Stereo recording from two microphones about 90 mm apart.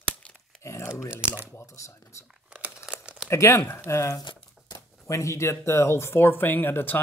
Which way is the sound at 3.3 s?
30° left (ahead or behind).